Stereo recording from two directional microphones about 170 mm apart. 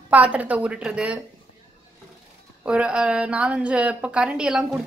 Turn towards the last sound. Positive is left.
turn(degrees=-5)  # may be behind; listen again after turning